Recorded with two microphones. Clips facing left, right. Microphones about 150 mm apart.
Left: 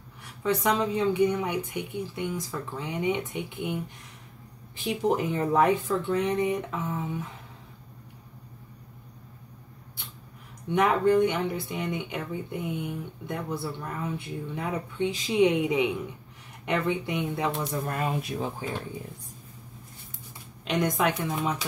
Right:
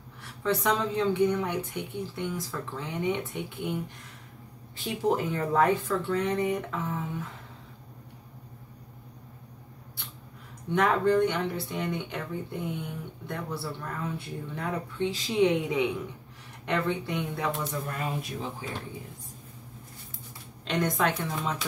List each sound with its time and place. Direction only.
0.2 s speech: 15° left (ahead or behind)
5.0 s speech: 20° left (ahead or behind)
10.7 s speech: 20° left (ahead or behind)
17.8 s speech: 50° left (ahead or behind)
20.6 s speech: 15° left (ahead or behind)